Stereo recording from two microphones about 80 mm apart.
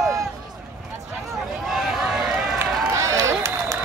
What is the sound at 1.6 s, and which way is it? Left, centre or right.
Run, centre.